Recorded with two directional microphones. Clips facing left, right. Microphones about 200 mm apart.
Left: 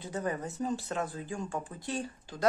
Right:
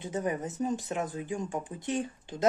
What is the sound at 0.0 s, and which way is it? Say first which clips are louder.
Speech: right 3 dB; 20° right (ahead or behind).